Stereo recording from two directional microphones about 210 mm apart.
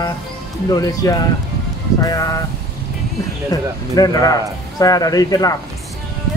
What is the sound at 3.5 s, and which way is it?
A man's voice, 15° left (ahead or behind).